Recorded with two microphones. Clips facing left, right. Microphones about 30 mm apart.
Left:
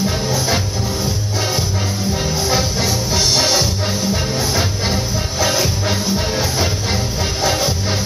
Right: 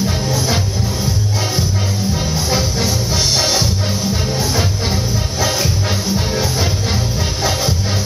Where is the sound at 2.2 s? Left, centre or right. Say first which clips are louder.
Left 2 dB; centre.